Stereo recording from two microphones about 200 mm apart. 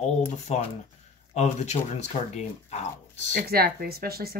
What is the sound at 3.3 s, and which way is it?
A woman's voice, 50° right (ahead or behind).